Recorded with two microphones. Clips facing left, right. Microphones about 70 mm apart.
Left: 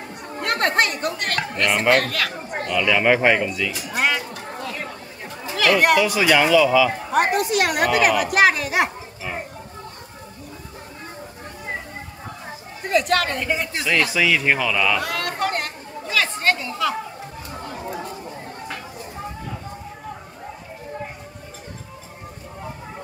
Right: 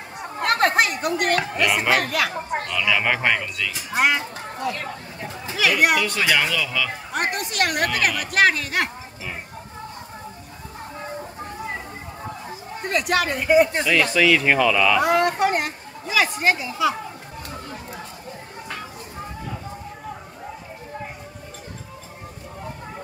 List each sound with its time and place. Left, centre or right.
0.4 s speech: centre
2.6 s speech: centre
5.6 s speech: centre
12.9 s a woman's voice: centre
13.7 s speech: centre
15.0 s speech: right